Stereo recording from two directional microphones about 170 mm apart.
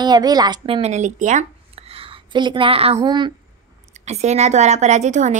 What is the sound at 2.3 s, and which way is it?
Speech, 30° right (ahead or behind).